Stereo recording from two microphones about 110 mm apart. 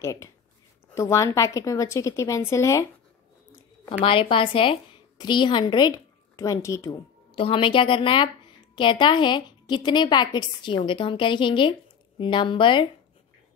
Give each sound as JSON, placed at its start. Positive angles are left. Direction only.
{"t": 0.0, "sound": "a woman's voice", "side_deg": 25}
{"t": 4.0, "sound": "a woman's voice", "side_deg": 50}
{"t": 7.3, "sound": "a woman's voice", "side_deg": 55}